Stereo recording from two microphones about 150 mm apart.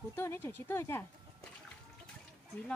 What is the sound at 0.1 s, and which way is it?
Speech, 15° left (ahead or behind).